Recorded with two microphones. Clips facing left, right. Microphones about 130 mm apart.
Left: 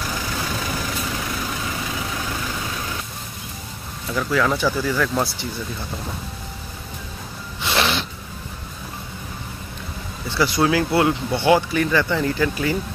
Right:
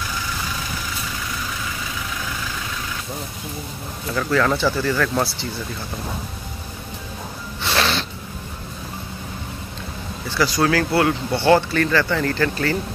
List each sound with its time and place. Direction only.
4.1 s speech: 5° left (ahead or behind)
7.6 s sneeze: 15° left (ahead or behind)
10.3 s speech: 20° left (ahead or behind)